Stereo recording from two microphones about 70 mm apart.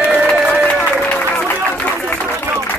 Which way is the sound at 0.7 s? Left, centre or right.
Left.